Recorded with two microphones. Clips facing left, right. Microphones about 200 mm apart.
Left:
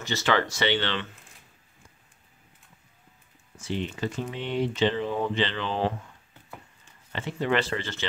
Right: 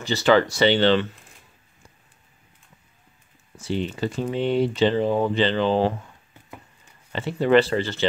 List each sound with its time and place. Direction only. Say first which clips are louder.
0.0 s speech: right 7 dB; 35° right (ahead or behind)
3.5 s speech: right 5 dB; 35° right (ahead or behind)